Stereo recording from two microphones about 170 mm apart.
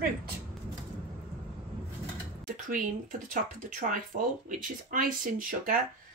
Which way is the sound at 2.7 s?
50° right (ahead or behind).